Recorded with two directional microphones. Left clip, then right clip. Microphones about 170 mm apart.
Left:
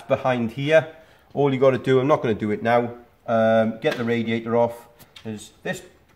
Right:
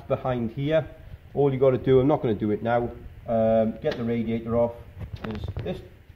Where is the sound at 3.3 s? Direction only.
15° left (ahead or behind).